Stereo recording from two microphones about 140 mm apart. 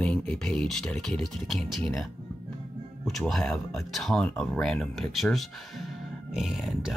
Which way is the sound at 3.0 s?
Centre (ahead or behind).